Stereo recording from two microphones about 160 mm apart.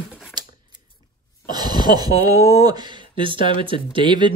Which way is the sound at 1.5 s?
25° right (ahead or behind).